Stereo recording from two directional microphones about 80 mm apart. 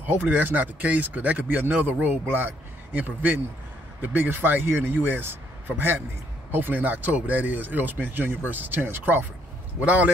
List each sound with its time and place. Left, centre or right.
0.0 s speech: right